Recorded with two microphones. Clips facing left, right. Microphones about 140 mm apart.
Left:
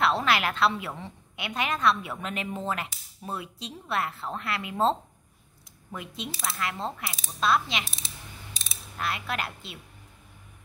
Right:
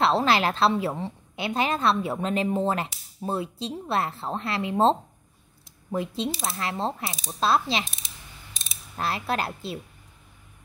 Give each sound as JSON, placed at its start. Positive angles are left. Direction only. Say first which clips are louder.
{"t": 0.0, "sound": "a woman's voice", "louder": "right 4 dB", "side_deg": -30}
{"t": 8.9, "sound": "a woman's voice", "louder": "right 4 dB", "side_deg": -35}